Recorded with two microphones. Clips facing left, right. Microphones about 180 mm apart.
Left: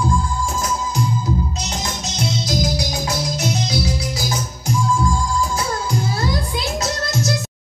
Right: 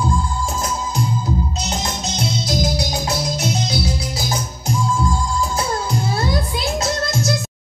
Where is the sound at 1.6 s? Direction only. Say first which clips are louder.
Right 2 dB; 25° right (ahead or behind).